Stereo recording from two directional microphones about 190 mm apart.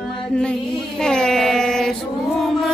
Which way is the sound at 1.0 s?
5° left (ahead or behind).